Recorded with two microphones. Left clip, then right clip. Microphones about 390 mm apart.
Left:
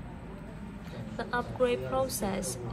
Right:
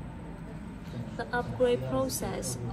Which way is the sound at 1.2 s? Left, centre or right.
Centre.